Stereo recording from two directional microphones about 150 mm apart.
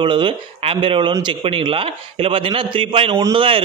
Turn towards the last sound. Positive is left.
turn(degrees=-35)  # may be behind; listen again after turning